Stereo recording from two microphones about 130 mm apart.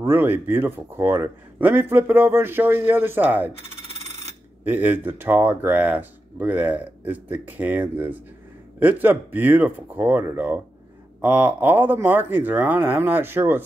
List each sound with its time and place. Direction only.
0.0 s speech: 15° right (ahead or behind)
4.6 s speech: 15° right (ahead or behind)